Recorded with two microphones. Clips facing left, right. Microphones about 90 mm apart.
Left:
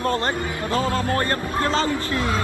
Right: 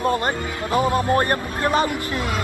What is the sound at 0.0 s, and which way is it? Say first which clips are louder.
A man's voice: right 1 dB; 15° right (ahead or behind).